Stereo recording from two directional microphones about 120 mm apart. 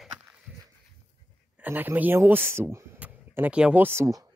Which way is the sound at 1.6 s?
15° right (ahead or behind).